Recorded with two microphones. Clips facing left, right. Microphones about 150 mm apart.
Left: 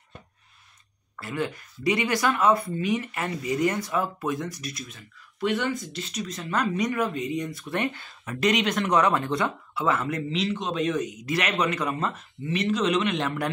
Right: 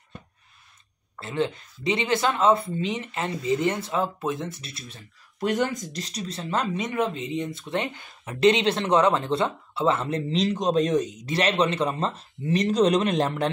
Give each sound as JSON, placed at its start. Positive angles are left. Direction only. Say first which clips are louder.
{"t": 1.1, "sound": "speech", "louder": "right 3 dB", "side_deg": -25}